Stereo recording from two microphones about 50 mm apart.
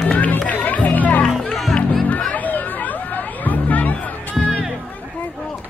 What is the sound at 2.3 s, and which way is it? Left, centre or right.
Chatter, left.